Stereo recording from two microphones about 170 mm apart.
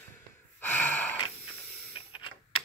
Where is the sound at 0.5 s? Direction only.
10° left (ahead or behind).